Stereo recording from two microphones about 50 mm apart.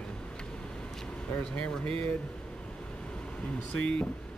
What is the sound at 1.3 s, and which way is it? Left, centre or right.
Speech, left.